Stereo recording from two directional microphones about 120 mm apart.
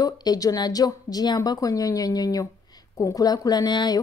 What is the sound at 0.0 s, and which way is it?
Speech, 30° left (ahead or behind).